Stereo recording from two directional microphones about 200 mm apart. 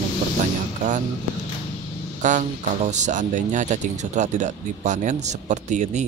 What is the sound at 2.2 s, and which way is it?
Speech, 40° right (ahead or behind).